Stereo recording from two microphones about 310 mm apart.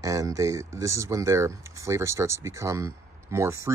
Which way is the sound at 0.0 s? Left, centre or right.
Centre.